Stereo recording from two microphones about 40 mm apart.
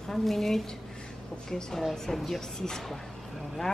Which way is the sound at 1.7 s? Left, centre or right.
Centre.